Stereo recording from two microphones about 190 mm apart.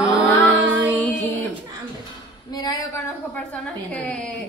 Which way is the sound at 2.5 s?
20° left (ahead or behind).